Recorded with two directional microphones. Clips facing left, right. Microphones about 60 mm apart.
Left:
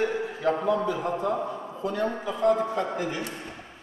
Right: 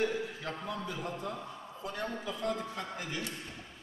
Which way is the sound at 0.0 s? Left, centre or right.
Left.